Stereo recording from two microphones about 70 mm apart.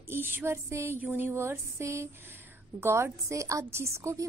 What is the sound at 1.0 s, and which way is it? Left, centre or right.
Speech, right.